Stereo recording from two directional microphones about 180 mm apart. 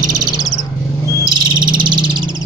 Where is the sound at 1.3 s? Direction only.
25° right (ahead or behind).